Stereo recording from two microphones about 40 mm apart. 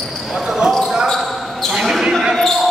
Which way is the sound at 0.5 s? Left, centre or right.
Centre.